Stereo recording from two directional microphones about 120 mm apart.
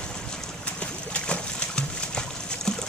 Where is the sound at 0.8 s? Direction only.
10° left (ahead or behind).